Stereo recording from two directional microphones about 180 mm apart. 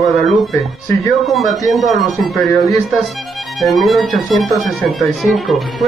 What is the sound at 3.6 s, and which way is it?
Speech, centre (ahead or behind).